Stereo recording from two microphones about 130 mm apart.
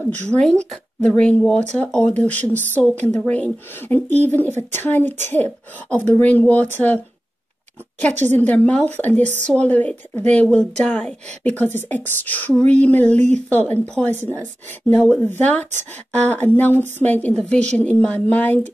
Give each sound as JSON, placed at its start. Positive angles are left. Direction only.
{"t": 0.3, "sound": "speech", "side_deg": 5}
{"t": 8.2, "sound": "a woman's voice", "side_deg": 15}